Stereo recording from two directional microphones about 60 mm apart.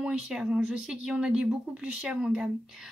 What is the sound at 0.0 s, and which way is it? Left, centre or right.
Speech, centre.